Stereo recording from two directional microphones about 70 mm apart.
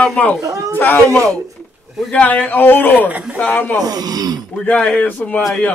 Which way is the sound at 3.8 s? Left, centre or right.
Right.